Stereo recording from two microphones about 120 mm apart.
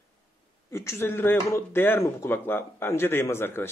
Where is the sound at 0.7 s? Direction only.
20° left (ahead or behind).